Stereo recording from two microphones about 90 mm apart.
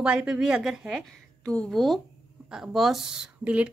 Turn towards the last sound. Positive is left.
turn(degrees=-15)  # may be behind; listen again after turning